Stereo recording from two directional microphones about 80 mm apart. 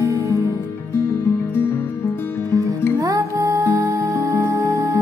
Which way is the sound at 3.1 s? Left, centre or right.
Right.